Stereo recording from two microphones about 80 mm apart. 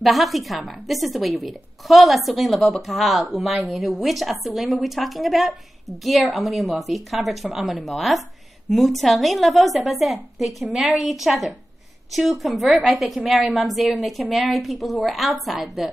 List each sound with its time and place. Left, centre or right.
0.0 s a woman's voice: centre
13.4 s a woman's voice: centre
13.7 s a woman's voice: centre